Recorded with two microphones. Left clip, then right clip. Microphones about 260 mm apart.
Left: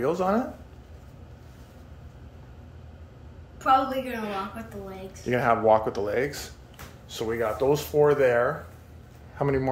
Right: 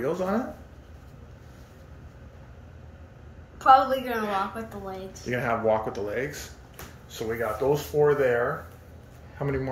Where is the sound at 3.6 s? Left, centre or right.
Centre.